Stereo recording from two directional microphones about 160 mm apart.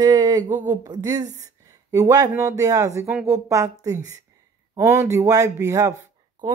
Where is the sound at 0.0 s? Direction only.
25° right (ahead or behind).